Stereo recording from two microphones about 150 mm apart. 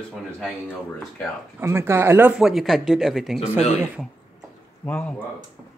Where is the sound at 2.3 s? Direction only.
5° right (ahead or behind).